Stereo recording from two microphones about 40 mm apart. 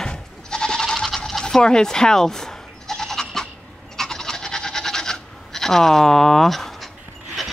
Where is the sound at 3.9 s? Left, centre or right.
Centre.